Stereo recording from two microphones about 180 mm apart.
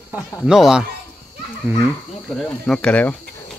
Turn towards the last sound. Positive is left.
turn(degrees=5)  # may be behind; listen again after turning